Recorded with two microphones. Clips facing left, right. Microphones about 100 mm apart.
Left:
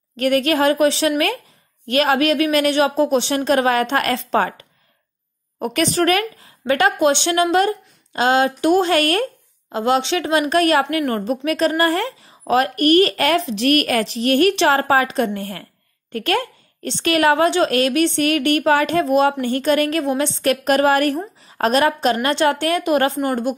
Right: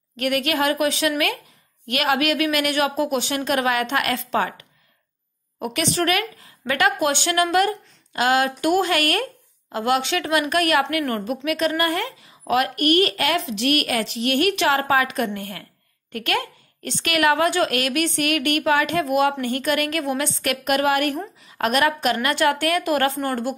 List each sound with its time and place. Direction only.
0.1 s speech: 35° left (ahead or behind)
11.4 s speech: 35° left (ahead or behind); by 23.5 s 15° left (ahead or behind)